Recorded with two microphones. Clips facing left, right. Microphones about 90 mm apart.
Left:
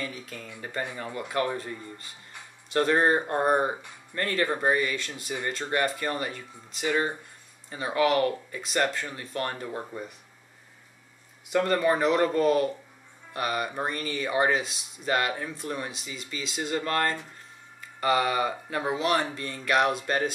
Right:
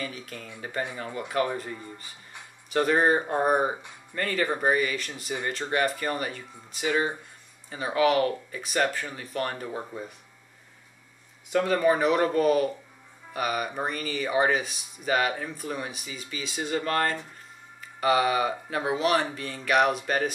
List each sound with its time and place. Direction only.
0.0 s speech: centre (ahead or behind)
11.5 s speech: 5° right (ahead or behind)